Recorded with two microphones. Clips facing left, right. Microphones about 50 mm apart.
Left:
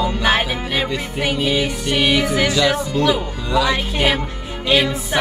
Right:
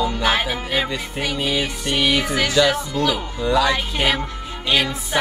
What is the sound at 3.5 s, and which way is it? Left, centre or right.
Music, centre.